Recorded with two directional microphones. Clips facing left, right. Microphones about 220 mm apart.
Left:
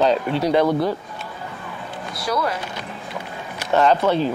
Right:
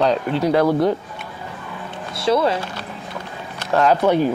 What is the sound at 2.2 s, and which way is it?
Speech, 25° right (ahead or behind).